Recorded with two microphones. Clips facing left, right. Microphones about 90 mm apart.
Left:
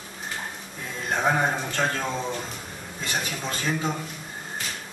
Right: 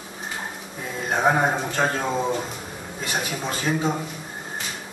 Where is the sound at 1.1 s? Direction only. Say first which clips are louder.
Right 3 dB; 15° right (ahead or behind).